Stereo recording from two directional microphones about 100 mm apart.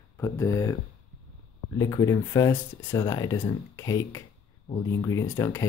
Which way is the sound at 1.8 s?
35° left (ahead or behind).